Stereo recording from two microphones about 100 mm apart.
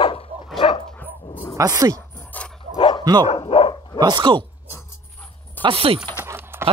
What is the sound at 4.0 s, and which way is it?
Speech, 50° right (ahead or behind).